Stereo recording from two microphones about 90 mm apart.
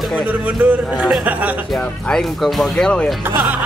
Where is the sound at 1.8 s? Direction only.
5° left (ahead or behind).